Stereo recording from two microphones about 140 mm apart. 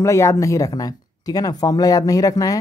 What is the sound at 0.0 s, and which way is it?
Speech, 20° left (ahead or behind).